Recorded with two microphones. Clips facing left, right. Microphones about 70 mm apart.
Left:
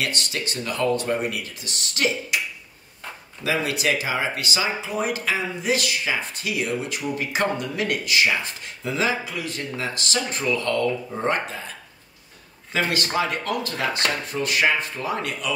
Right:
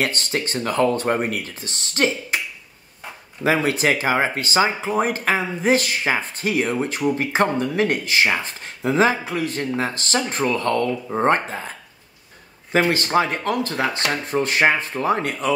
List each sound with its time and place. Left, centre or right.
0.0 s speech: right
3.4 s speech: right
12.7 s speech: right